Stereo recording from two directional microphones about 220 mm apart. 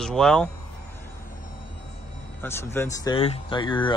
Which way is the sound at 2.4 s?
10° left (ahead or behind).